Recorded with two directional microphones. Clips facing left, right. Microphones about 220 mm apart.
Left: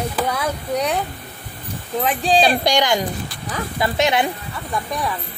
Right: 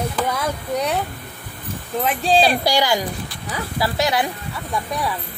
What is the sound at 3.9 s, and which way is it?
Speech, 20° left (ahead or behind).